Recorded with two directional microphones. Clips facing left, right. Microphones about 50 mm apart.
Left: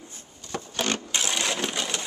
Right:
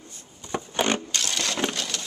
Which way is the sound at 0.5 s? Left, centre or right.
Right.